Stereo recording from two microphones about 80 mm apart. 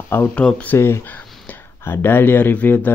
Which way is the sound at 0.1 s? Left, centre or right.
Left.